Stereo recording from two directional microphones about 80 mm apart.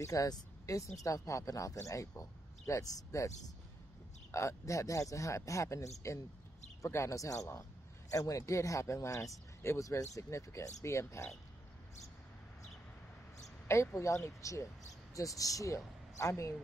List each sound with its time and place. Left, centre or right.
0.0 s speech: left
13.9 s speech: left